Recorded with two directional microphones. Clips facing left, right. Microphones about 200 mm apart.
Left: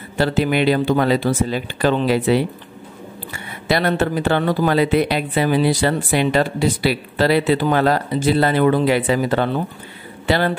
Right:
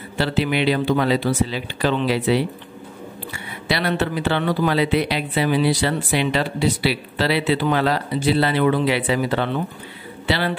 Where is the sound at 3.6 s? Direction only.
45° left (ahead or behind).